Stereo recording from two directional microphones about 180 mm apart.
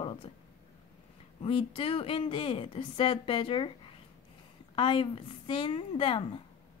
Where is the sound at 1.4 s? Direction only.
30° left (ahead or behind).